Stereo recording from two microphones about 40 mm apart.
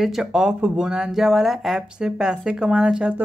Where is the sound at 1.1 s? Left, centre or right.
Centre.